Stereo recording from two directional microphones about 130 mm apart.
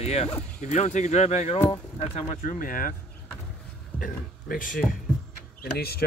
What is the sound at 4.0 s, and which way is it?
Speech, 90° left.